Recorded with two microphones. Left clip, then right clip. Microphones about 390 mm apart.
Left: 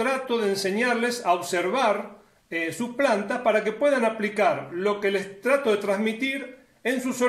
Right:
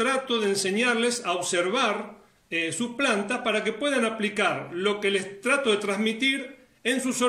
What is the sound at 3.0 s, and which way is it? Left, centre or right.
Speech, left.